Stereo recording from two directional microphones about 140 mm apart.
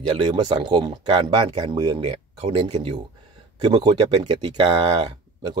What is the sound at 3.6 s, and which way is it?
Speech, 35° right (ahead or behind).